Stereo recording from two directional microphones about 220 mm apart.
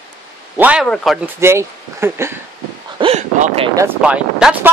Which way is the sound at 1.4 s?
10° right (ahead or behind).